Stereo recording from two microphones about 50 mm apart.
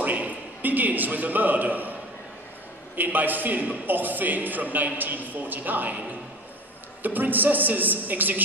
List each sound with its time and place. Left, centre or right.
0.0 s a man's voice: right
3.0 s a man's voice: right